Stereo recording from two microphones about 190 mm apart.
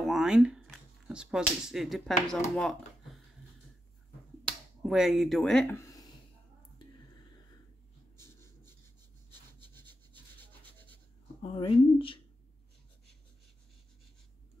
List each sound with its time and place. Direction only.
0.0 s speech: centre (ahead or behind)
4.5 s speech: centre (ahead or behind)
5.8 s a sound: 15° left (ahead or behind)
8.2 s rub: 15° left (ahead or behind)
9.8 s rub: 10° left (ahead or behind)
11.4 s speech: 25° left (ahead or behind)